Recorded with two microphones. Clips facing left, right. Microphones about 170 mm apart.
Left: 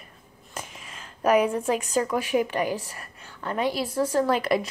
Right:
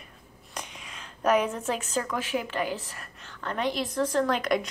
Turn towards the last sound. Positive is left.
turn(degrees=5)  # may be behind; listen again after turning